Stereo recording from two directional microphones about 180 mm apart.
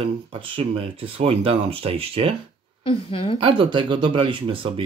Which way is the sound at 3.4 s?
30° right (ahead or behind).